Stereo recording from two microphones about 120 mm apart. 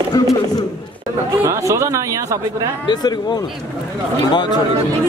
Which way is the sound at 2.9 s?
35° left (ahead or behind).